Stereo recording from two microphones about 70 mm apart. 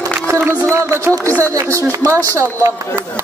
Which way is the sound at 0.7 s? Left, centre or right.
Right.